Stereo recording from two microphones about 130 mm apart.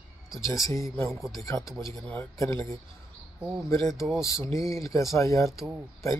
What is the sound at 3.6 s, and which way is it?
Speech, 25° left (ahead or behind).